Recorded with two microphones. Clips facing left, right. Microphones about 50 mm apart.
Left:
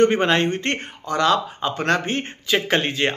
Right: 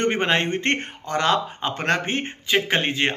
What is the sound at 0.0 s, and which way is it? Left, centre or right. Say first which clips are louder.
Speech: left 4 dB; right.